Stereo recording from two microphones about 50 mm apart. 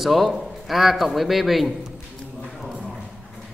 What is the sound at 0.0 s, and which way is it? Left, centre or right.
A man's voice, centre.